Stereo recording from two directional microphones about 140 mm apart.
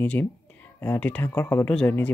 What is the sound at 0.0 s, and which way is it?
Speech, 10° left (ahead or behind).